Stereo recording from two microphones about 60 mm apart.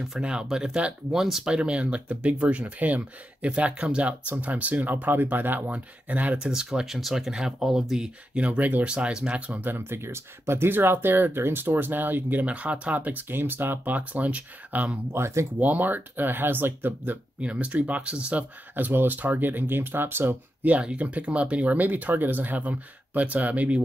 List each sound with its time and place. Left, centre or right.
0.2 s speech: centre
6.3 s speech: centre
8.4 s speech: right
9.7 s speech: right
15.1 s speech: right
15.6 s speech: right
17.4 s speech: right
20.7 s speech: right